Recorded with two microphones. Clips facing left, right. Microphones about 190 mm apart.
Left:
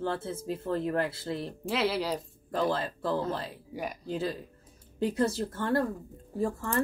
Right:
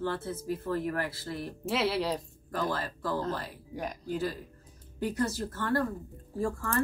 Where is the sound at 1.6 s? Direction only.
Centre (ahead or behind).